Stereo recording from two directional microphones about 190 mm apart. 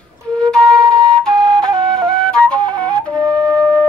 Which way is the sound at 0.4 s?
5° left (ahead or behind).